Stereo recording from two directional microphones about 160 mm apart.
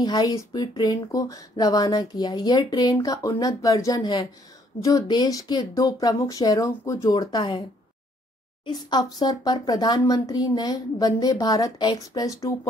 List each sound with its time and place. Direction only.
0.0 s speech: 25° left (ahead or behind)
8.6 s speech: 25° left (ahead or behind)